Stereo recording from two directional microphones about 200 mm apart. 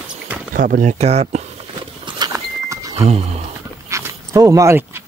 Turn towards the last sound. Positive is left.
turn(degrees=-15)  # may be behind; listen again after turning